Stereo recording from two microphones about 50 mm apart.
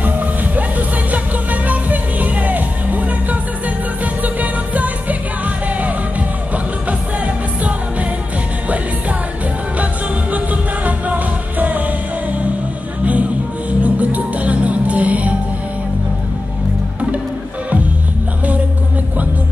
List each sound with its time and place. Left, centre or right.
0.0 s music: right
6.5 s music: right
10.3 s music: right
13.0 s music: right